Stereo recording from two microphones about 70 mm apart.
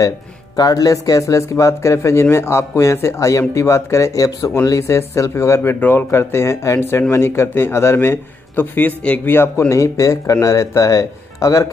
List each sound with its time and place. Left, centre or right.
0.6 s a man's voice: left
9.7 s speech: left